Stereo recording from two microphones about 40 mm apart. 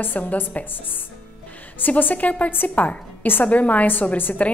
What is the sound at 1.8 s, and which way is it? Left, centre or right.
Speech, left.